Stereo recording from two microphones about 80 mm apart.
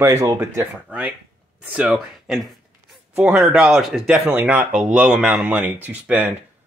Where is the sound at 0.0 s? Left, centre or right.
Right.